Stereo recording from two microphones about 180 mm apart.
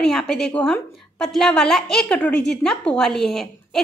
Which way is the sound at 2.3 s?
70° left (ahead or behind).